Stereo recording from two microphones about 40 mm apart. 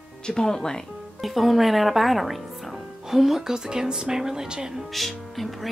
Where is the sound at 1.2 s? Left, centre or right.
Centre.